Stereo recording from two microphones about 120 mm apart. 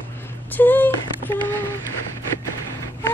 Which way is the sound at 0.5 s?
15° left (ahead or behind).